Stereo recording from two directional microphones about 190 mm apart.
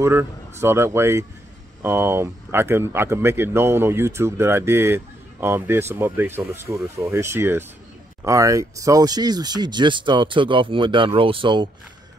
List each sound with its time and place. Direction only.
0.0 s speech: 15° right (ahead or behind)